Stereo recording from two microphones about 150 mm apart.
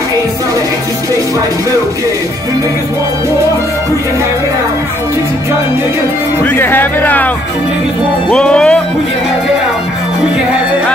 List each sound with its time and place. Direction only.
6.4 s speech: 10° left (ahead or behind)
8.3 s speech: 5° left (ahead or behind)